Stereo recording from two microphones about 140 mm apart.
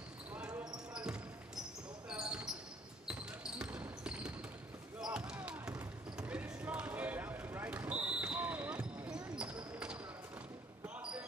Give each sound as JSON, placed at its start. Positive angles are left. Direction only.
{"t": 0.9, "sound": "basketball bounce", "side_deg": -5}